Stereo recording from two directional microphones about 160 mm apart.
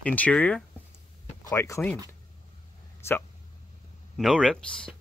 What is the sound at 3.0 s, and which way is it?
Speech, 15° left (ahead or behind).